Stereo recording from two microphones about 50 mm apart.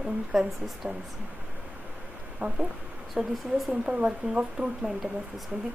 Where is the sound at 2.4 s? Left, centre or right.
Centre.